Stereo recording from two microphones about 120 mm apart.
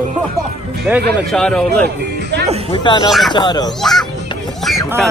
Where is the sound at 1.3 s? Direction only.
5° left (ahead or behind).